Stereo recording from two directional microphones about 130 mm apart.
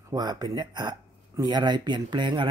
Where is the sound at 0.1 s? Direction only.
30° right (ahead or behind).